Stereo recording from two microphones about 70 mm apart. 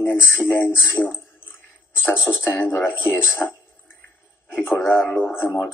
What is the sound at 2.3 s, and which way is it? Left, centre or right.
A man's voice, left.